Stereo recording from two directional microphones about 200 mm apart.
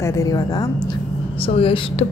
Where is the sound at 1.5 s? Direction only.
30° left (ahead or behind).